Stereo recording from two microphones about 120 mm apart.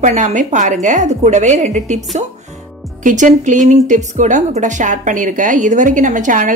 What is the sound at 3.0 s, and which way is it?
A woman's voice, 90° right.